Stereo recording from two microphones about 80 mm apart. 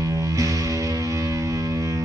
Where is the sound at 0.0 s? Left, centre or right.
Right.